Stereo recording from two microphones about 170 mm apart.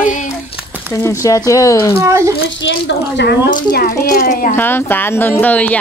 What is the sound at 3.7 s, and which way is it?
Speech, 55° left (ahead or behind).